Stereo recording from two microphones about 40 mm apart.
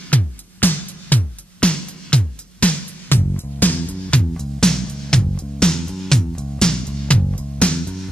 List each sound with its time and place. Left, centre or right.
0.1 s music: left
1.6 s music: left
3.1 s music: left
4.3 s music: centre